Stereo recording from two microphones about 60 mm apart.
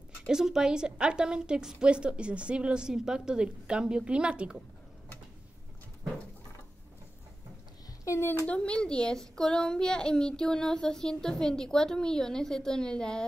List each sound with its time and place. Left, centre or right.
0.3 s a woman's voice: centre
8.1 s a sound: left
8.5 s a child's voice: centre